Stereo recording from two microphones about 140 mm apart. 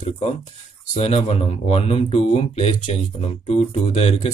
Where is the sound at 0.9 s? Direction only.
45° left (ahead or behind).